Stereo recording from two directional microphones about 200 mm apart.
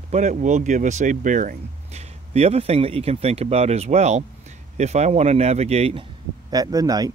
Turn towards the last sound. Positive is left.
turn(degrees=-20)  # may be behind; listen again after turning